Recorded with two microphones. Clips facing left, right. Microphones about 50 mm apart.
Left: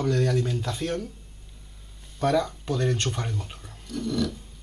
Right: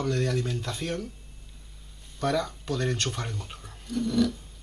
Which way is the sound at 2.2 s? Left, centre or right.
Centre.